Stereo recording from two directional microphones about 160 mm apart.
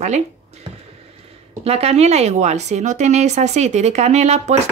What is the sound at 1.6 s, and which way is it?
Speech, 40° right (ahead or behind).